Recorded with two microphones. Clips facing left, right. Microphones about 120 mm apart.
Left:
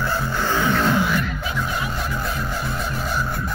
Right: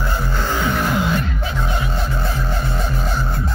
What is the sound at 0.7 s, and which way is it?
Beatboxing, 20° right (ahead or behind).